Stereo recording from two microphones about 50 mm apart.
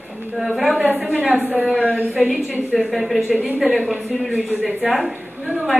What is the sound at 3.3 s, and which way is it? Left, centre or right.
Speech, centre.